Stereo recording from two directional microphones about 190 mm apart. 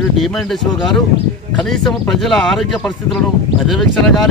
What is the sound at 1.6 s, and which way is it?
Speech, 5° left (ahead or behind).